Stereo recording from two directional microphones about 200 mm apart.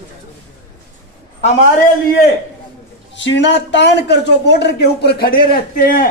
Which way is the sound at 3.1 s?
65° left (ahead or behind).